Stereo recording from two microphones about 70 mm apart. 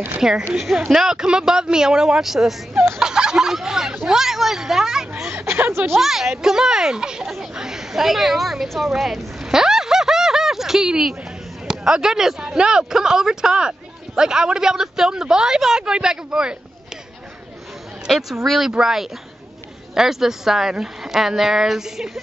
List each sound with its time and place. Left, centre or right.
0.2 s speech: centre
5.3 s a woman's voice: right
5.9 s speech: centre
18.0 s speech: centre